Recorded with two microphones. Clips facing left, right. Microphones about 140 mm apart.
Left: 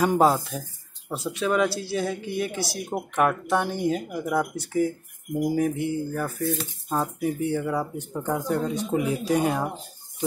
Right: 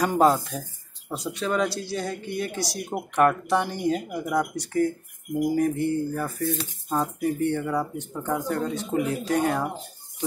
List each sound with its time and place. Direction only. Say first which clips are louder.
0.0 s speech: even; 5° left (ahead or behind)